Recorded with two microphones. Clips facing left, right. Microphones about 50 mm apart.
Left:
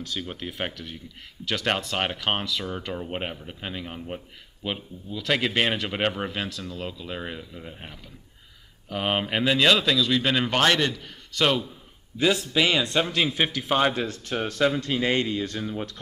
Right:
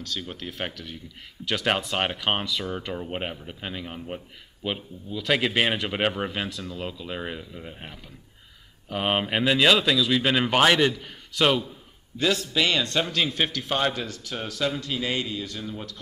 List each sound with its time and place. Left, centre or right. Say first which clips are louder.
0.0 s a man's voice: left 1 dB; centre
1.4 s speech: right 1 dB; centre
12.2 s a man's voice: left 2 dB; centre
14.0 s speech: left 5 dB; left